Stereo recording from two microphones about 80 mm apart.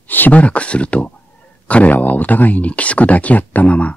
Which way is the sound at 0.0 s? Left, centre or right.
Left.